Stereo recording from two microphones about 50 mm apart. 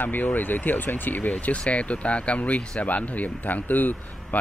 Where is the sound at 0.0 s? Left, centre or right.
Left.